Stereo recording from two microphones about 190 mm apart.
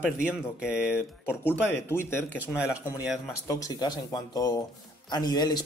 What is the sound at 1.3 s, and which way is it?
Speech, 10° left (ahead or behind).